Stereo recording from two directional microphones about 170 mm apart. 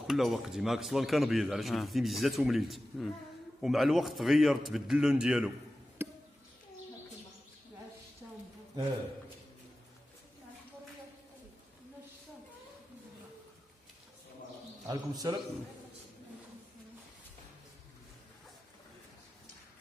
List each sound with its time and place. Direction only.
0.0 s a man's voice: centre (ahead or behind)
6.0 s a sound: 15° right (ahead or behind)
14.9 s a man's voice: 20° right (ahead or behind)